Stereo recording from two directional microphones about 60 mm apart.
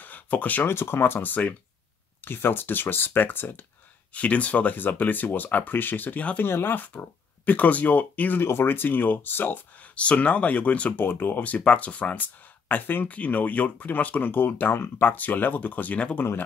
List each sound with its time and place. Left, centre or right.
0.0 s a sound: left
0.7 s speech: left
6.4 s speech: left
9.9 s speech: left